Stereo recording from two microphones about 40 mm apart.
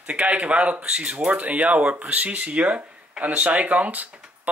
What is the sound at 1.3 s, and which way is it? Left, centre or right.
Speech, right.